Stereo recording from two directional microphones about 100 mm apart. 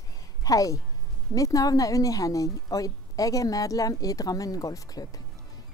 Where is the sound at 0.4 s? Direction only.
35° left (ahead or behind).